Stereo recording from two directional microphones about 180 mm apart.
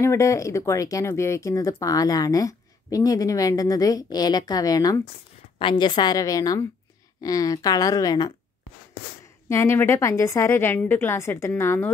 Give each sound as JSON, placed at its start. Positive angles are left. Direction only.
{"t": 0.0, "sound": "speech", "side_deg": 15}
{"t": 9.5, "sound": "a woman's voice", "side_deg": 15}